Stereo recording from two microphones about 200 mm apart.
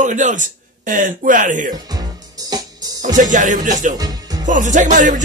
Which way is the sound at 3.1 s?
40° right (ahead or behind).